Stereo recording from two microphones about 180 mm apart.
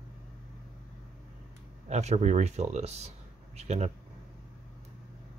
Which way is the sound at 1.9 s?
35° right (ahead or behind).